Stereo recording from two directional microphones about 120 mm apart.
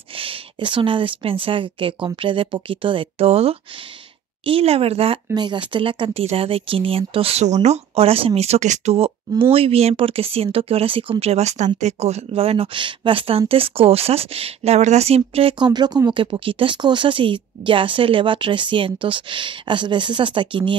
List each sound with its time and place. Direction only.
0.1 s speech: 50° right (ahead or behind)
5.3 s speech: 40° right (ahead or behind); by 8.3 s 55° right (ahead or behind)
8.4 s speech: 70° right (ahead or behind); by 15.5 s 55° right (ahead or behind)
15.6 s speech: 35° right (ahead or behind)